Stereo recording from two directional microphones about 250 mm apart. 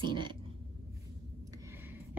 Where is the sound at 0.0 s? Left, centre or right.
Centre.